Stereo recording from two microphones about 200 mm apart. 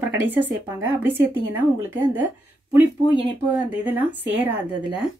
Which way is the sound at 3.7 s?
10° right (ahead or behind).